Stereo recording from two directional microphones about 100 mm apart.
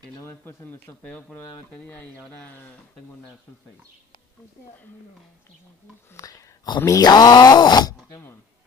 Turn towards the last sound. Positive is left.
turn(degrees=45)  # may be behind; listen again after turning